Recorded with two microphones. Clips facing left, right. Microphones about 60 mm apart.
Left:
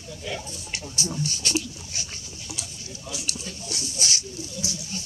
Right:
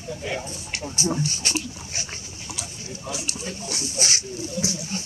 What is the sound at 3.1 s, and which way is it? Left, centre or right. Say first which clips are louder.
Speech: right 4 dB; right.